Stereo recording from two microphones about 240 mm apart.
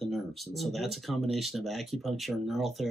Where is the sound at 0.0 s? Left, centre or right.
Centre.